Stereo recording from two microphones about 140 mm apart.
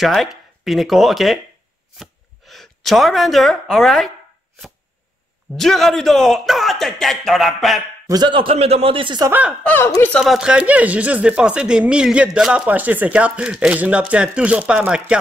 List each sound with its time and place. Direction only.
0.0 s speech: centre (ahead or behind)
5.5 s speech: centre (ahead or behind)
8.1 s a man's voice: 35° right (ahead or behind)
9.6 s speech: 10° left (ahead or behind)
9.8 s speech: 20° left (ahead or behind)
10.1 s speech: centre (ahead or behind)